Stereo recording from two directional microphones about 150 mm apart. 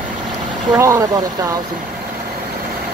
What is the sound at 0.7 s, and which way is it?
Speech, 20° right (ahead or behind).